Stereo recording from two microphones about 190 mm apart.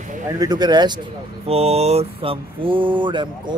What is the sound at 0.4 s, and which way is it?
A man's voice, 20° right (ahead or behind).